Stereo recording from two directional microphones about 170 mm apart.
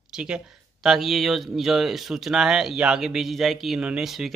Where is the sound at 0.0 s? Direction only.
5° right (ahead or behind).